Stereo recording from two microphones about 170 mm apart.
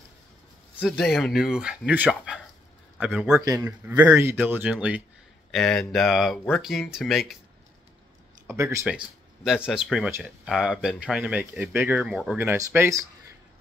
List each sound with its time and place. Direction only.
0.7 s speech: 5° left (ahead or behind)
3.3 s a man's voice: 20° right (ahead or behind); by 7.3 s centre (ahead or behind)
8.5 s speech: 15° right (ahead or behind)
8.8 s speech: 5° right (ahead or behind)